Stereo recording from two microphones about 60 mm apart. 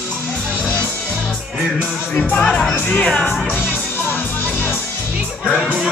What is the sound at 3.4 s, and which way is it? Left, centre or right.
Music, left.